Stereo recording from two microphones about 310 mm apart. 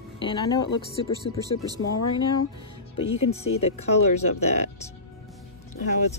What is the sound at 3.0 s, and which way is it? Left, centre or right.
Speech, centre.